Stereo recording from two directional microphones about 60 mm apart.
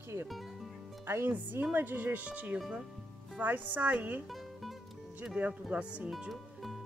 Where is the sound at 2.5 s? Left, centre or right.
Centre.